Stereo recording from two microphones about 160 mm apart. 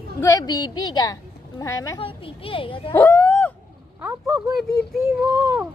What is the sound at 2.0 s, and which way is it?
Speech, 35° left (ahead or behind).